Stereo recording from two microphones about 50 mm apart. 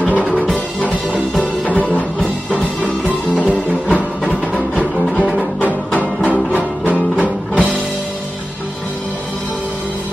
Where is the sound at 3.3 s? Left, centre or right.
Left.